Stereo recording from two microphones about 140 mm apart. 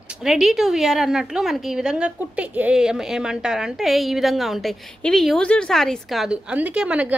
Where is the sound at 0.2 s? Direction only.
5° right (ahead or behind).